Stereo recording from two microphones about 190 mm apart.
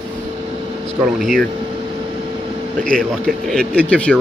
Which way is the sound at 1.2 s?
Centre (ahead or behind).